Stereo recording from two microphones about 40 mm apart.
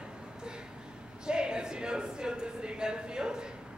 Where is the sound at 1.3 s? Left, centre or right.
Right.